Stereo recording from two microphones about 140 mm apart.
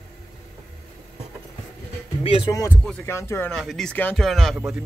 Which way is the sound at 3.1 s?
20° left (ahead or behind).